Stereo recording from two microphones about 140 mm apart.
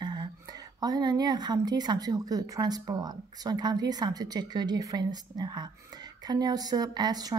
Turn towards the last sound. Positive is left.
turn(degrees=-30)  # may be behind; listen again after turning